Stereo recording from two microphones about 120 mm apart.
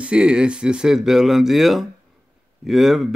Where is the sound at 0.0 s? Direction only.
10° right (ahead or behind).